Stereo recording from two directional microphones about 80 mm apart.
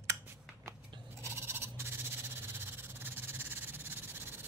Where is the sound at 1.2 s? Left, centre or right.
Right.